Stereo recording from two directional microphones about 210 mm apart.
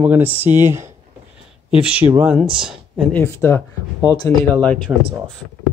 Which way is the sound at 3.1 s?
10° left (ahead or behind).